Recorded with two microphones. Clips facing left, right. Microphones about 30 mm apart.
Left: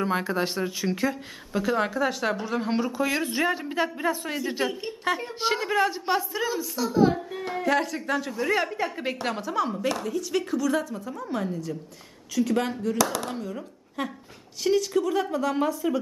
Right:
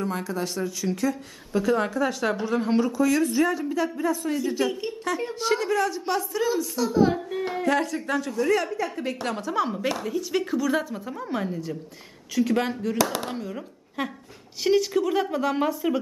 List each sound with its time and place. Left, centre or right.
0.0 s speech: left
1.5 s speech: centre
2.9 s speech: left
6.4 s a woman's voice: centre
7.7 s speech: centre
9.3 s a woman's voice: centre
9.7 s a woman's voice: centre
12.9 s a woman's voice: centre